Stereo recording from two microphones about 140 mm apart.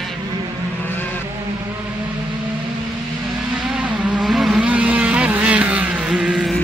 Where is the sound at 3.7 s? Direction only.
5° right (ahead or behind).